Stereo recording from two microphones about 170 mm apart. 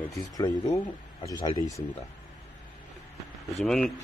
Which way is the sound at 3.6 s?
Centre (ahead or behind).